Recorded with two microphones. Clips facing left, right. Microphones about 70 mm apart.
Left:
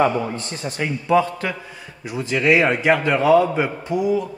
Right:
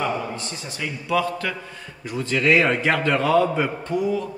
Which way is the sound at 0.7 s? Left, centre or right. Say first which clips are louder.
Left 8 dB; left.